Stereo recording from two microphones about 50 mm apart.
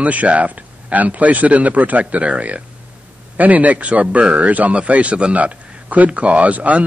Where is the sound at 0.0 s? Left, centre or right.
Right.